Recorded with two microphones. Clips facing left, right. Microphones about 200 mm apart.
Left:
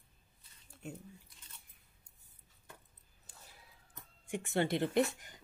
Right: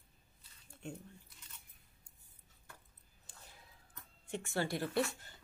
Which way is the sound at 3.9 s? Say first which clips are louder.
Left 2 dB; 20° left (ahead or behind).